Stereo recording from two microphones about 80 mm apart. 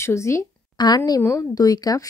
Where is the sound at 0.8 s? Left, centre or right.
Left.